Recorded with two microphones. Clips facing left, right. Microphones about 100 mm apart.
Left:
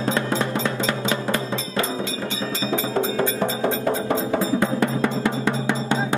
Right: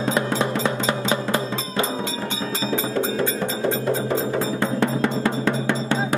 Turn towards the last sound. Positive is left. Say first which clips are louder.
# even
turn(degrees=20)  # may be behind; listen again after turning